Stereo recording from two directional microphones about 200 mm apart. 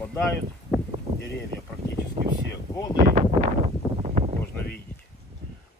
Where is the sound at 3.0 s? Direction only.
35° right (ahead or behind).